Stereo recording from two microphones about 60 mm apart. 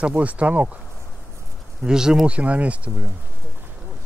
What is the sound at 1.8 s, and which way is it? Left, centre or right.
Speech, centre.